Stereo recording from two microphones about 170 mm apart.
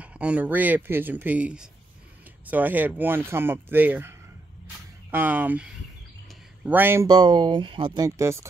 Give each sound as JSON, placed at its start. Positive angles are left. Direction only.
{"t": 0.0, "sound": "speech", "side_deg": -5}
{"t": 7.1, "sound": "speech", "side_deg": -25}